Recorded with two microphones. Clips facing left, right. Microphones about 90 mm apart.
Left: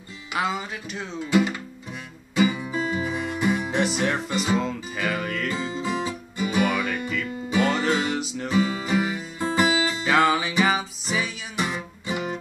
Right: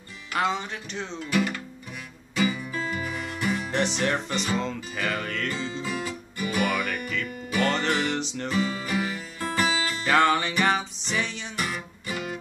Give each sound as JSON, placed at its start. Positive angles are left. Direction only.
{"t": 0.3, "sound": "speech", "side_deg": 5}
{"t": 1.2, "sound": "speech", "side_deg": 20}
{"t": 2.3, "sound": "music", "side_deg": 20}
{"t": 3.8, "sound": "speech", "side_deg": 5}
{"t": 4.6, "sound": "music", "side_deg": 5}
{"t": 8.2, "sound": "music", "side_deg": 5}
{"t": 11.5, "sound": "music", "side_deg": 20}